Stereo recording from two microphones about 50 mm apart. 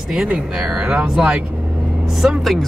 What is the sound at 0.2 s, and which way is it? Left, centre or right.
Speech, centre.